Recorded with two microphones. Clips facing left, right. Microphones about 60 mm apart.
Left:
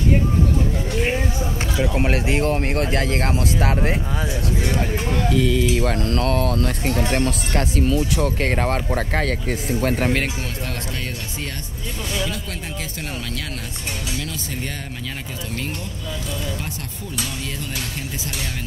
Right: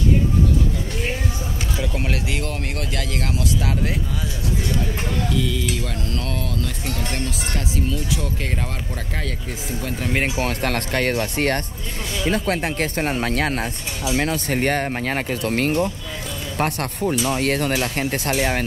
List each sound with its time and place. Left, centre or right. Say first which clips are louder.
1.8 s speech: left 6 dB; left
4.6 s speech: left 2 dB; left
10.1 s speech: right 1 dB; right
10.4 s speech: right 6 dB; right